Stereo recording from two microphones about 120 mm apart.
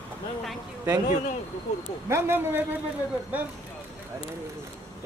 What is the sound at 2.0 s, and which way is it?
Speech, 20° right (ahead or behind).